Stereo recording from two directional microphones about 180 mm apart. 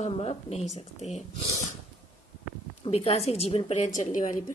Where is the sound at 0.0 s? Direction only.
35° left (ahead or behind).